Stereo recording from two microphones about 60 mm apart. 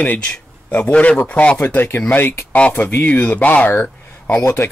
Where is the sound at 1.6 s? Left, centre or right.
Left.